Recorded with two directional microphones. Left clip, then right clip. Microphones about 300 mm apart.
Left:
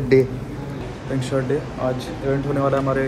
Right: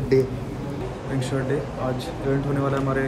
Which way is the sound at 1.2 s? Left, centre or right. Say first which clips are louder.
Left 4 dB; centre.